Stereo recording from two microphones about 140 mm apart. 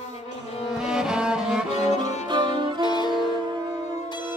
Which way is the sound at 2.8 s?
30° left (ahead or behind).